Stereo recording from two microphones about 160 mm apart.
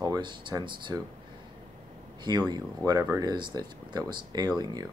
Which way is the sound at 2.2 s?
25° right (ahead or behind).